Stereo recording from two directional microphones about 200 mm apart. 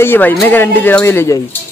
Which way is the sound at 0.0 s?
10° left (ahead or behind).